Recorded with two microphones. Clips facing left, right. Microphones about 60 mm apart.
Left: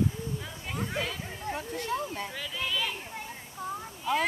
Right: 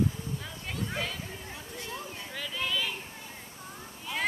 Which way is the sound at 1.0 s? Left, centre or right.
Centre.